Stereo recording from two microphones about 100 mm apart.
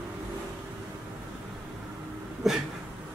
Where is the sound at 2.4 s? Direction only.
5° right (ahead or behind).